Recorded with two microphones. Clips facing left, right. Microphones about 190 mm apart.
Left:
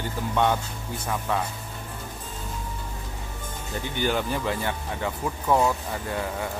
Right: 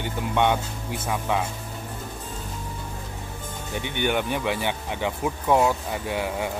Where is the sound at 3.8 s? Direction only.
65° right (ahead or behind).